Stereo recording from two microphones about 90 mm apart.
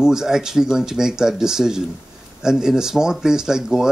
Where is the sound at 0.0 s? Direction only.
5° right (ahead or behind).